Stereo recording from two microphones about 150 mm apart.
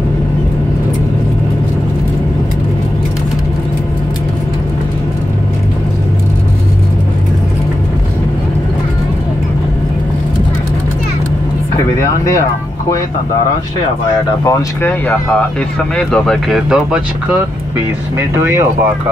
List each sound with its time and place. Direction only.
14.4 s speech: 20° left (ahead or behind); by 17.0 s 5° right (ahead or behind)
18.4 s speech: 20° right (ahead or behind)